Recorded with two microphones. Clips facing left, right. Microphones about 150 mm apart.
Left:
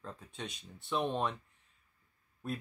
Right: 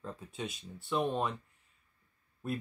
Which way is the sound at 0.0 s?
5° right (ahead or behind).